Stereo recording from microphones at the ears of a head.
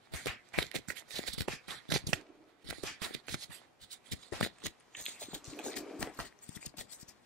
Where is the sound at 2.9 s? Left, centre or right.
Right.